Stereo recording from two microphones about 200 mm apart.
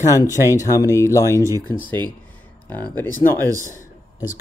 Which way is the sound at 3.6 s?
40° left (ahead or behind).